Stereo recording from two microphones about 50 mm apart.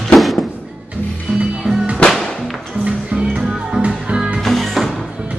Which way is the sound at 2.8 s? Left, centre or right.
Right.